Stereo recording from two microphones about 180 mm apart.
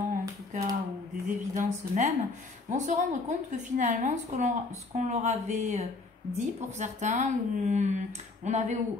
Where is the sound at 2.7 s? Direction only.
40° right (ahead or behind).